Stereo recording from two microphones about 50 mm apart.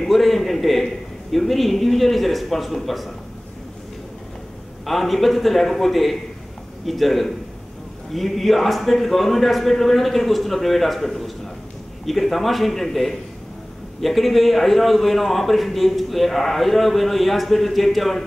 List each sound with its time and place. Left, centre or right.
0.0 s a man's voice: centre
4.8 s a man's voice: centre